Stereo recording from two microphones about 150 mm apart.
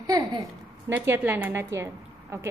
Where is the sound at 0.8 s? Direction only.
15° right (ahead or behind).